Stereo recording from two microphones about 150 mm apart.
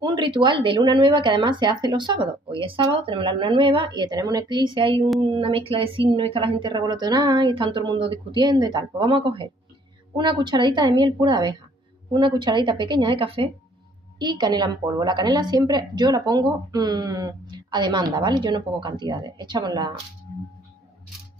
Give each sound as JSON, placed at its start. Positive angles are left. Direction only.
{"t": 0.0, "sound": "a woman's voice", "side_deg": -30}